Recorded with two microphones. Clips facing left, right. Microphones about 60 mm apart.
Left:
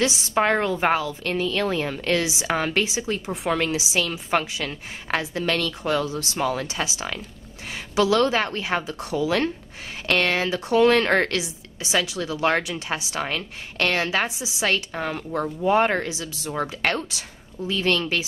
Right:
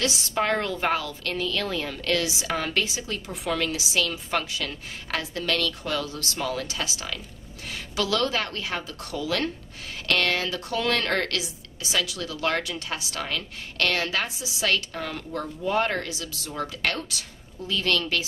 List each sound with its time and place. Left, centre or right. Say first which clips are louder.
0.0 s speech: left 4 dB; left